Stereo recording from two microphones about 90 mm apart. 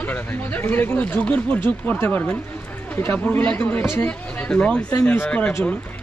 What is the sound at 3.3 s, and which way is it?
Speech, 20° left (ahead or behind).